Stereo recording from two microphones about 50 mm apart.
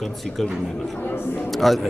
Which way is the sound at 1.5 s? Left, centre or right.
Centre.